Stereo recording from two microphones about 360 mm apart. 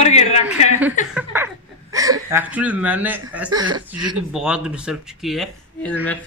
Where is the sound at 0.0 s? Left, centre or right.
Centre.